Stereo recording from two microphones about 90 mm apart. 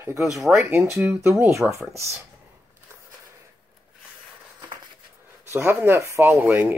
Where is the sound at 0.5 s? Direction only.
30° right (ahead or behind).